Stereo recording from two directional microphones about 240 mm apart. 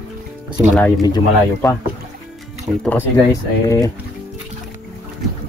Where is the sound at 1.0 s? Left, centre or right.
Centre.